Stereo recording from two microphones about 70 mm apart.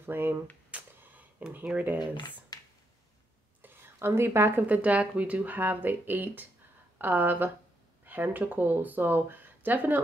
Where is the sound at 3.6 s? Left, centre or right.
Right.